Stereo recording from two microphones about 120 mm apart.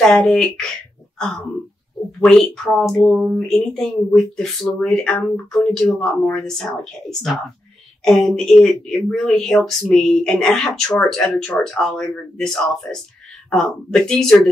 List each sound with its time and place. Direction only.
0.0 s speech: 5° left (ahead or behind)
1.1 s a sound: 5° left (ahead or behind)
2.1 s speech: 5° left (ahead or behind)